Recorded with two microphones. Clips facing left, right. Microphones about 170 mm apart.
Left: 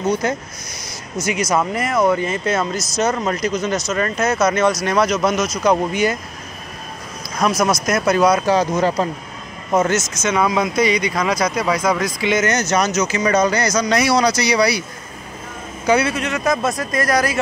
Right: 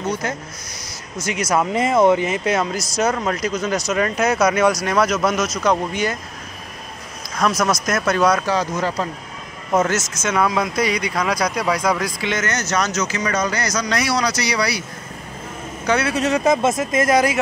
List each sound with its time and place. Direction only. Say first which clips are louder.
1.4 s speech: even; 5° right (ahead or behind)
1.7 s speech: right 2 dB; 25° right (ahead or behind)
3.1 s speech: left 2 dB; centre (ahead or behind)
5.6 s speech: left 5 dB; 5° left (ahead or behind)
7.3 s speech: left 2 dB; 10° left (ahead or behind)
8.4 s speech: left 4 dB; 20° left (ahead or behind)
9.7 s speech: left 1 dB; centre (ahead or behind)
11.3 s speech: left 2 dB; 5° left (ahead or behind)
13.2 s speech: left 7 dB; 25° left (ahead or behind)
16.3 s speech: right 3 dB; 30° right (ahead or behind)